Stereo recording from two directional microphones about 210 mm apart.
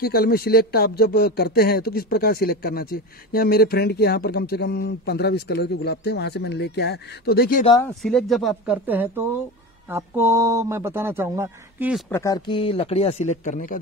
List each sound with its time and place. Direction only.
0.0 s speech: 45° left (ahead or behind)
8.0 s speech: centre (ahead or behind)
12.1 s speech: 15° left (ahead or behind); by 13.7 s 35° left (ahead or behind)